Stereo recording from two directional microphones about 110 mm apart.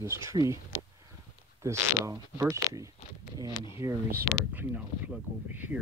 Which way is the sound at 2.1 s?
30° right (ahead or behind).